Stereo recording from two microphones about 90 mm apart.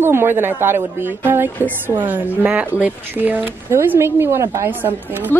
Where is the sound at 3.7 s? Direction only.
30° right (ahead or behind).